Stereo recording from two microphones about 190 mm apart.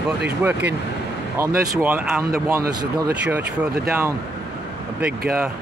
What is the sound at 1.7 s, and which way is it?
Speech, 10° right (ahead or behind).